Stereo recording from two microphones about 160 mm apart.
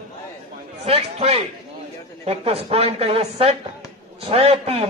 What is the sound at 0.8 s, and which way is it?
Speech, 40° right (ahead or behind).